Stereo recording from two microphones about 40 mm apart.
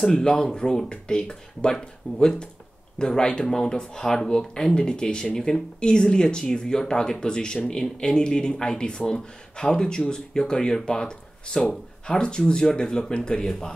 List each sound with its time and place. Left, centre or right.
0.0 s speech: centre